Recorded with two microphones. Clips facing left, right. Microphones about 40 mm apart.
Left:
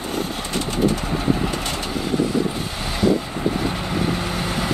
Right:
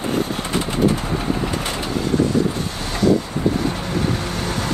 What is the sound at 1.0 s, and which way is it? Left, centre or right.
Vehicle, centre.